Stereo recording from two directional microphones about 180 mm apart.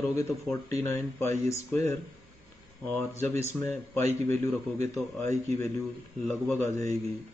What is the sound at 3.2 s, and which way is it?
Speech, 15° left (ahead or behind).